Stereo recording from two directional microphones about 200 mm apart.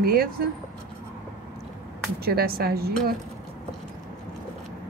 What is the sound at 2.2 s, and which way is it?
Speech, 50° right (ahead or behind).